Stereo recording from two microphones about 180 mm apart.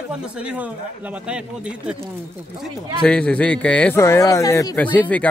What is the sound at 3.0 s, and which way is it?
Speech, 5° left (ahead or behind).